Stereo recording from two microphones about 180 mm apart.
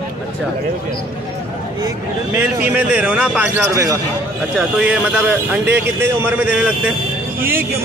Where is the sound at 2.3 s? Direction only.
10° right (ahead or behind).